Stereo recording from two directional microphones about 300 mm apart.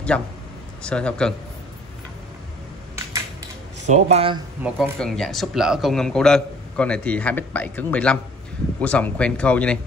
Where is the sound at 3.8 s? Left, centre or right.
Right.